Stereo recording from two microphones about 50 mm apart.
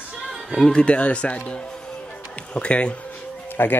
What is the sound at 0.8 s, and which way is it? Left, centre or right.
A man's voice, left.